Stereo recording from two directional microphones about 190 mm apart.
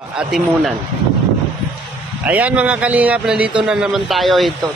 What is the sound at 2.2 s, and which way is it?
Speech, 10° right (ahead or behind).